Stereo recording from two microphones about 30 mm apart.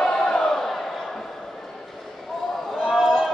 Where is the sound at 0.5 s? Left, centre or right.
Centre.